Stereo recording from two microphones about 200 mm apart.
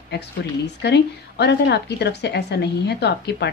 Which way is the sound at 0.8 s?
55° left (ahead or behind).